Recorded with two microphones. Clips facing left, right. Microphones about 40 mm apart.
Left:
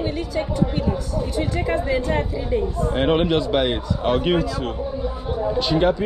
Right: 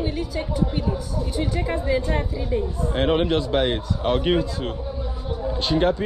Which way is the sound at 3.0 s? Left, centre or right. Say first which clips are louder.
Left 1 dB; left.